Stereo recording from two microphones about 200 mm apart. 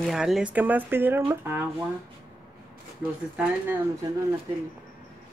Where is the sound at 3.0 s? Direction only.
5° right (ahead or behind).